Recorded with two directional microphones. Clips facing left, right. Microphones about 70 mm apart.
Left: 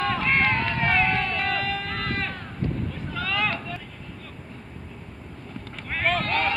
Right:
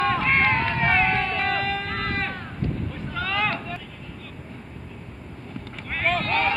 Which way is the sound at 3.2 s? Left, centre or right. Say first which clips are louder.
Right 1 dB; right.